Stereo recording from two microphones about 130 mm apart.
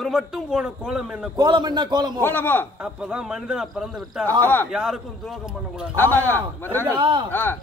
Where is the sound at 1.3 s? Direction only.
35° right (ahead or behind).